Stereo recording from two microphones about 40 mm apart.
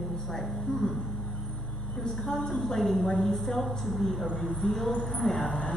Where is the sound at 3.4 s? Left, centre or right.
Centre.